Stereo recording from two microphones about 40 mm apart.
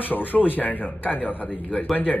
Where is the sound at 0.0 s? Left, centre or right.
Left.